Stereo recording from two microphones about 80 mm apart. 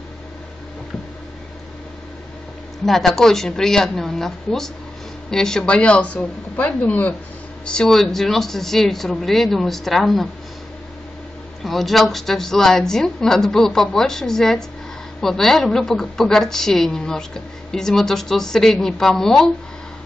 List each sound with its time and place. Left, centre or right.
2.8 s a woman's voice: centre; by 7.2 s left
7.6 s a woman's voice: centre
11.6 s a woman's voice: centre